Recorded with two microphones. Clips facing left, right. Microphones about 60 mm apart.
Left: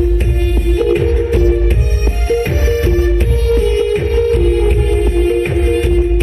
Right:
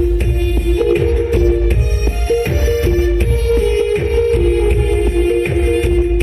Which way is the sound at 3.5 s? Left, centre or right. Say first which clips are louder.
Left 1 dB; right.